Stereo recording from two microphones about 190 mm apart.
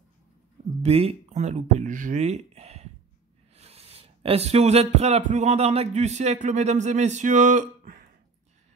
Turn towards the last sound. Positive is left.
turn(degrees=-45)  # may be behind; listen again after turning